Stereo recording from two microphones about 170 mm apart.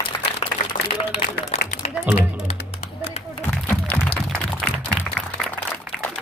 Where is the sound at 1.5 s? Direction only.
40° left (ahead or behind).